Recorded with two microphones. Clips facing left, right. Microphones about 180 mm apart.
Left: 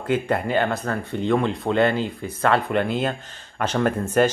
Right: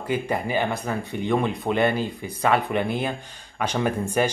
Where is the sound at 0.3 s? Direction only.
10° right (ahead or behind).